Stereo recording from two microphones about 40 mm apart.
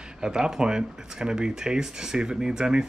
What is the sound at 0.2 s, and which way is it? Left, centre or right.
Speech, centre.